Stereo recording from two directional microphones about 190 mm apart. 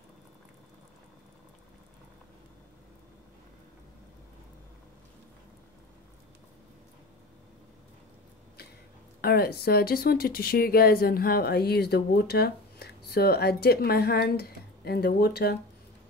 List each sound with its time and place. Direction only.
9.2 s speech: 55° left (ahead or behind)